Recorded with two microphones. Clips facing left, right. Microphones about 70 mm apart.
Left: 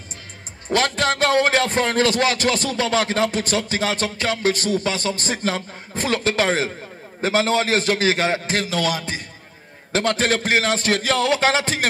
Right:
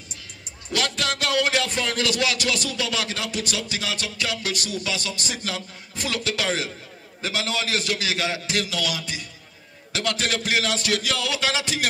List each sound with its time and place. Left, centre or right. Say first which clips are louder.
0.7 s speech: left 6 dB; left